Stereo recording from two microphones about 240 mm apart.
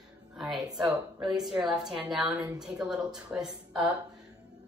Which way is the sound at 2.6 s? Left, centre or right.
Centre.